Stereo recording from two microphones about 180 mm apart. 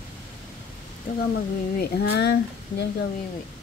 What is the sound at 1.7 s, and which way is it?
Speech, 60° left (ahead or behind).